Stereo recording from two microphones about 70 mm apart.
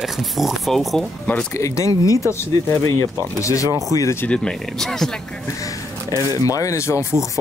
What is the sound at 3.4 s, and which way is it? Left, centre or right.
Speech, left.